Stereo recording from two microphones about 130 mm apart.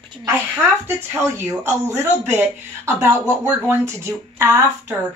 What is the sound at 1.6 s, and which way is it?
A woman's voice, 20° right (ahead or behind).